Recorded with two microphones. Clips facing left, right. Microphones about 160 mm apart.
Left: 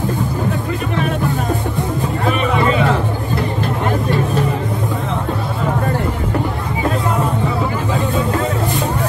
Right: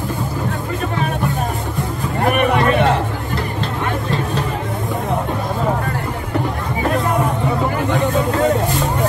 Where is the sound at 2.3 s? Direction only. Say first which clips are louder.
Right 2 dB; 60° right (ahead or behind).